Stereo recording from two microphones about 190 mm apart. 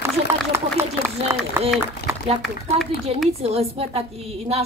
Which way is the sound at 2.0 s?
55° left (ahead or behind).